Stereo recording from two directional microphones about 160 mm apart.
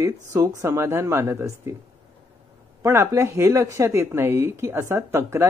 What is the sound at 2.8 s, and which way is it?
Speech, 15° right (ahead or behind).